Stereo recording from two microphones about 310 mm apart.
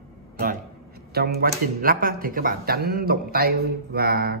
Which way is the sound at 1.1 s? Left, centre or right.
Right.